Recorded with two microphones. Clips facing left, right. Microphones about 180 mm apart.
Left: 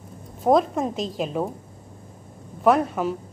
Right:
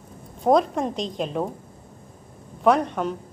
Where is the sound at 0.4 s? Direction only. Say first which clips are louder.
Even; centre (ahead or behind).